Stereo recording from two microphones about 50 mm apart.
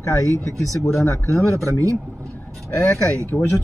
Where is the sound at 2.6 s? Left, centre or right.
Left.